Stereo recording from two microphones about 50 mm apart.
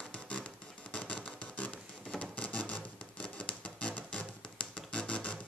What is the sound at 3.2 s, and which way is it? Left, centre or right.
Music, left.